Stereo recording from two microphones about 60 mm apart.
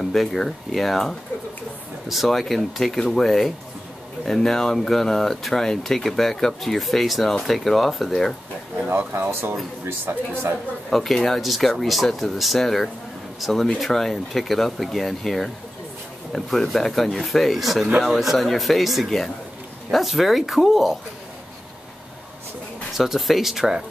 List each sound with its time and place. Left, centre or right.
0.0 s speech: centre
8.8 s speech: right
10.9 s speech: centre
22.9 s speech: centre